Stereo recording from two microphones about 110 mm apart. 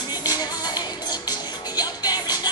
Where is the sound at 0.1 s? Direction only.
35° left (ahead or behind).